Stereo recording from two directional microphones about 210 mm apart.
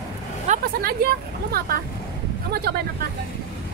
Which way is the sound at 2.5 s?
45° right (ahead or behind).